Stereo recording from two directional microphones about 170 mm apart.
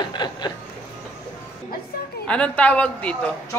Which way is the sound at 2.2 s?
5° left (ahead or behind).